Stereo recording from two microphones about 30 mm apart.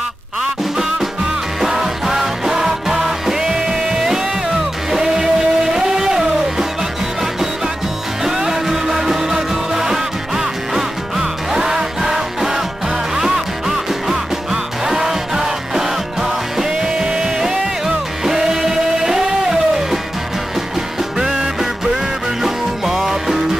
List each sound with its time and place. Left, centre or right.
0.4 s music: centre
8.2 s music: centre
16.6 s music: right
17.4 s music: centre
21.2 s music: centre